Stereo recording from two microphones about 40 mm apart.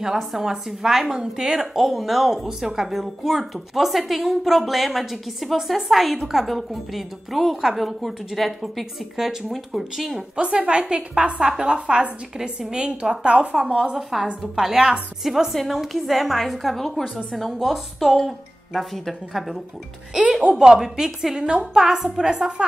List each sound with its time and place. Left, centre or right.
0.0 s speech: centre
6.4 s a woman's voice: centre
9.1 s speech: centre
9.5 s a woman's voice: centre
10.3 s a woman's voice: right
12.4 s speech: centre
12.8 s a woman's voice: right
14.5 s a woman's voice: centre
20.5 s speech: centre